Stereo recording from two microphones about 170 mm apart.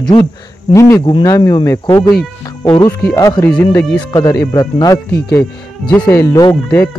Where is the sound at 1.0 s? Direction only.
25° left (ahead or behind).